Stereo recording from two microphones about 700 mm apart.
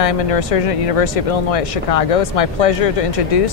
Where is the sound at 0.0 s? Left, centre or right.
Left.